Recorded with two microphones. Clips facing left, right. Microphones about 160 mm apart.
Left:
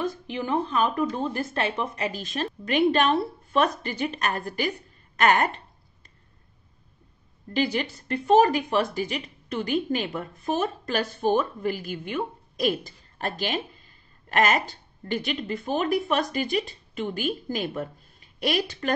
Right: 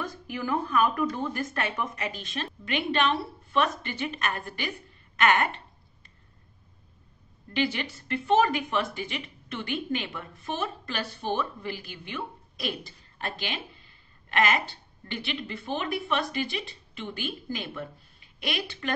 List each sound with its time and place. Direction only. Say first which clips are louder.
0.0 s speech: left 4 dB; 25° left (ahead or behind); by 5.5 s 40° left (ahead or behind)
7.5 s speech: left 3 dB; 40° left (ahead or behind)